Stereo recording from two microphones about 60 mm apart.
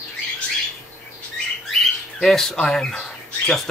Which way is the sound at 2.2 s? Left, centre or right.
Centre.